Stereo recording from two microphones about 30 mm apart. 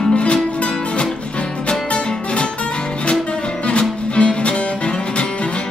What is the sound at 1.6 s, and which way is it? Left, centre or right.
Music, left.